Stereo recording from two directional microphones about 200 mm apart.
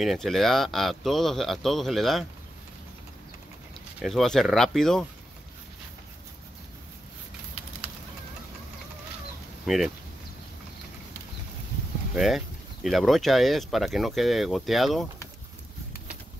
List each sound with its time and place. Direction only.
0.0 s speech: centre (ahead or behind)
4.0 s speech: centre (ahead or behind)
9.7 s speech: centre (ahead or behind)
12.2 s speech: centre (ahead or behind)